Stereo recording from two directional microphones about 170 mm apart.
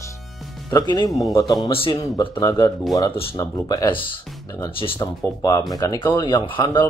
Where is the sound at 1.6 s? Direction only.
30° left (ahead or behind).